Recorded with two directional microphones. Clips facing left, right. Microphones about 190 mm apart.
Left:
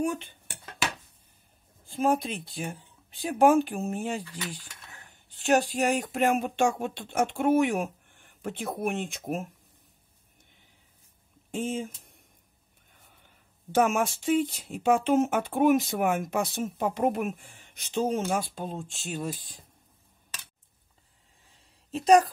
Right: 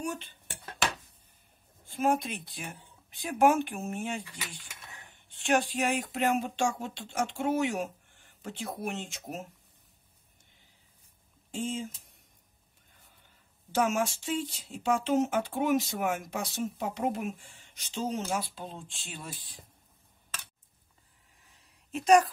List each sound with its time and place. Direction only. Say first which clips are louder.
0.0 s speech: left 7 dB; 55° left (ahead or behind)
2.0 s speech: left 2 dB; 30° left (ahead or behind)
5.4 s speech: left 4 dB; 40° left (ahead or behind)
11.5 s speech: left 3 dB; 55° left (ahead or behind)
13.7 s speech: left 4 dB; 55° left (ahead or behind)
21.5 s a sound: left 4 dB; 30° left (ahead or behind)